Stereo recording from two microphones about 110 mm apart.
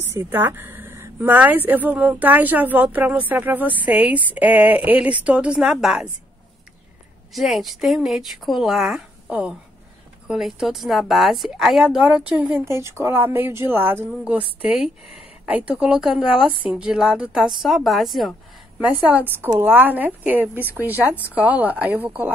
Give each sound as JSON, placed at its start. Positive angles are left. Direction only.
{"t": 0.0, "sound": "speech", "side_deg": -20}
{"t": 7.3, "sound": "a woman's voice", "side_deg": 0}
{"t": 18.8, "sound": "speech", "side_deg": -15}